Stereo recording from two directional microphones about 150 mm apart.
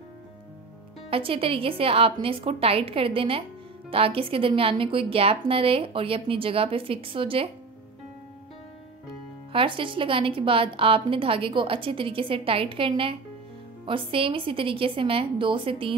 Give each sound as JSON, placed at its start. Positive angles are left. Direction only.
{"t": 1.1, "sound": "a woman's voice", "side_deg": -40}
{"t": 9.5, "sound": "a woman's voice", "side_deg": -35}